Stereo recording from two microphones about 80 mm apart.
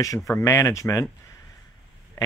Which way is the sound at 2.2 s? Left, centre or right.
Left.